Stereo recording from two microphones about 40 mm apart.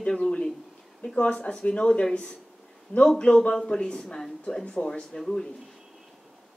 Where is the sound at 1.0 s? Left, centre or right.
Left.